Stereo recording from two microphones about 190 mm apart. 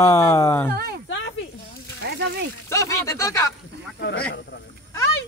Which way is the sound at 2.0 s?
65° right (ahead or behind).